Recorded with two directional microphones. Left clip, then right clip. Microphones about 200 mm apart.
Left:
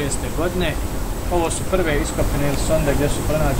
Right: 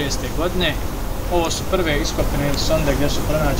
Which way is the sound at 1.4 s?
10° left (ahead or behind).